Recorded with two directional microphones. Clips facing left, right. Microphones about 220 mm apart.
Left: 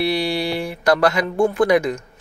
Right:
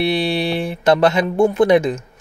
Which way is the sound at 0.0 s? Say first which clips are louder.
Right 2 dB; 25° right (ahead or behind).